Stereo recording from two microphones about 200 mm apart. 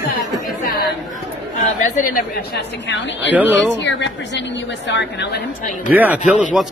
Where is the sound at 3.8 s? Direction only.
60° left (ahead or behind).